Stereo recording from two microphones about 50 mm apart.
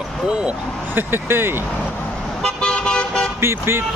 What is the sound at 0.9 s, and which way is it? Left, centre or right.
Speech, right.